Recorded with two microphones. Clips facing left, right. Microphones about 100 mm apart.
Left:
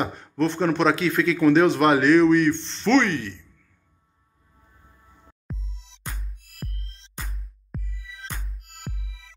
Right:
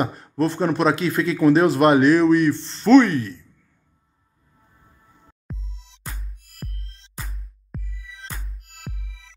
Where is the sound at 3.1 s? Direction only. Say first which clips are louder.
Right 3 dB; 35° right (ahead or behind).